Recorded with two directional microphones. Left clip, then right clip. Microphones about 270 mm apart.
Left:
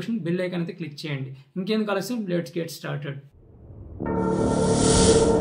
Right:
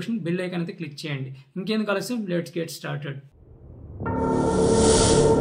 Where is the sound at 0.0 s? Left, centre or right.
Centre.